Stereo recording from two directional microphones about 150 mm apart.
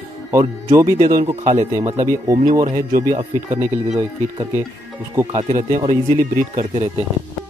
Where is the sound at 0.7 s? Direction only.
20° right (ahead or behind).